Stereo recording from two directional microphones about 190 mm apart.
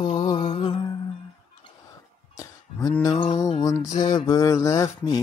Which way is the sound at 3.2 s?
35° left (ahead or behind).